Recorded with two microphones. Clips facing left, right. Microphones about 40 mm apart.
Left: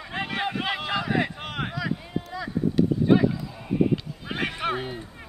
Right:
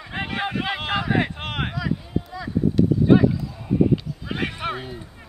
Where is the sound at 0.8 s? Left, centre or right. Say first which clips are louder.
Right 3 dB; right.